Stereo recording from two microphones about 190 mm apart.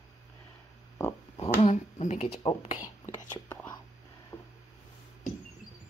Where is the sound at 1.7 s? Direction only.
40° left (ahead or behind).